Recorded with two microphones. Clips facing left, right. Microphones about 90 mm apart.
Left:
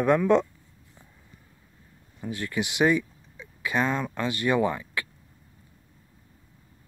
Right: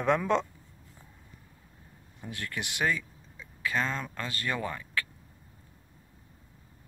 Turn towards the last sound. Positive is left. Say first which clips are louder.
# left 8 dB
turn(degrees=15)  # may be behind; listen again after turning